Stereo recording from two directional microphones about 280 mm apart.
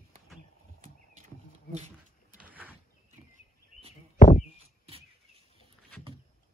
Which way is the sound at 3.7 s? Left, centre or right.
Left.